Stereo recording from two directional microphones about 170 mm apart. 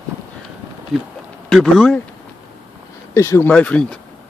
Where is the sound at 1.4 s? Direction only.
Centre (ahead or behind).